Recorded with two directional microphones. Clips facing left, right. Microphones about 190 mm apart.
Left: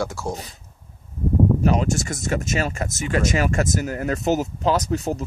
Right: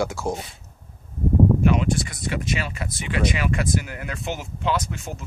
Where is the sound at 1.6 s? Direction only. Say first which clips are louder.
Even; 40° left (ahead or behind).